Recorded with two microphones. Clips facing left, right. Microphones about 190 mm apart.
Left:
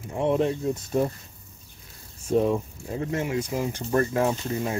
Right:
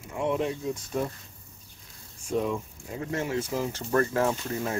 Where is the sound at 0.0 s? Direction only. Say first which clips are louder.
Left 4 dB; 35° left (ahead or behind).